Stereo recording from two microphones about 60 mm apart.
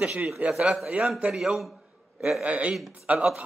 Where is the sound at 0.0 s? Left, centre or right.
Right.